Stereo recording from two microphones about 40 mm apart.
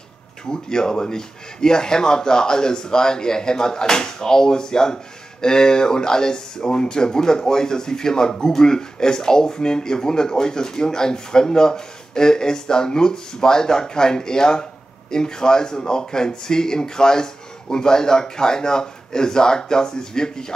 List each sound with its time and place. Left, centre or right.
0.5 s speech: centre